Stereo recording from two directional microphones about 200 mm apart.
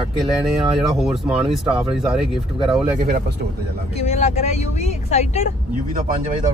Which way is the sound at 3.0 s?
45° right (ahead or behind).